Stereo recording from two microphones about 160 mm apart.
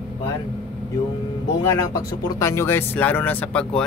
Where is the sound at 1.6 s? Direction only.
20° left (ahead or behind).